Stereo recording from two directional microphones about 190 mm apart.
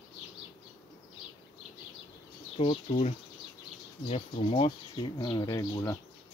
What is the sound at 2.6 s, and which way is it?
Speech, 30° left (ahead or behind).